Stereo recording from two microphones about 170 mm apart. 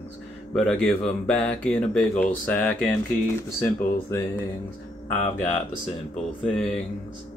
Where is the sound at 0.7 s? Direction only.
5° left (ahead or behind).